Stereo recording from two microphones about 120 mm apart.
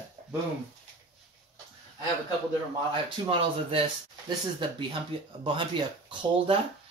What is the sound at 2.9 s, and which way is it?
Speech, 50° right (ahead or behind).